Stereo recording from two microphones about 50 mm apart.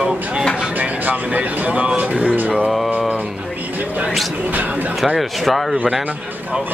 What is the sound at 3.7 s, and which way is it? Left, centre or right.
Music, right.